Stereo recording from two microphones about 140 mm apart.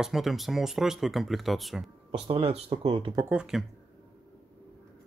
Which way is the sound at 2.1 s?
40° right (ahead or behind).